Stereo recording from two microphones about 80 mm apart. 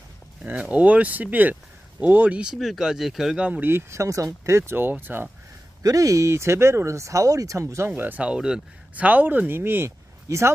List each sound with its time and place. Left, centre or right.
0.4 s speech: centre
2.5 s speech: centre
3.4 s speech: centre
3.7 s speech: right
4.7 s speech: right
5.8 s speech: right
7.9 s speech: right